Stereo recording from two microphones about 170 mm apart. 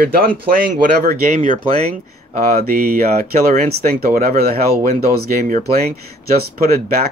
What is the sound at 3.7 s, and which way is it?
Speech, 60° right (ahead or behind).